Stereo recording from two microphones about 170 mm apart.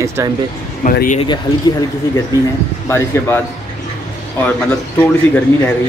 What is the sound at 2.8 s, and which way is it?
Speech, 15° left (ahead or behind).